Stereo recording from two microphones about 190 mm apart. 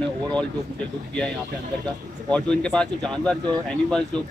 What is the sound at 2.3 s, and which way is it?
Speech, 5° left (ahead or behind).